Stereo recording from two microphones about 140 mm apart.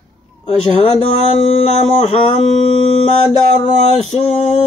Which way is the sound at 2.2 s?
40° left (ahead or behind).